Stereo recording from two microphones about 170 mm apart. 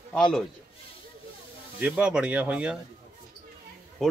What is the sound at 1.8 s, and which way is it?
Speech, 10° right (ahead or behind).